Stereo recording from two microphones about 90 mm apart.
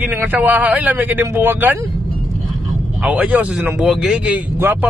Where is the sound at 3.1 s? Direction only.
15° right (ahead or behind).